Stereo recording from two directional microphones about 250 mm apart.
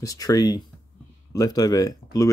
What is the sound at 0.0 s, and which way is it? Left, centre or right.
Speech, centre.